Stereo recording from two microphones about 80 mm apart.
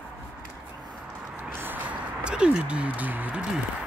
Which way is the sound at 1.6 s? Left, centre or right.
Right.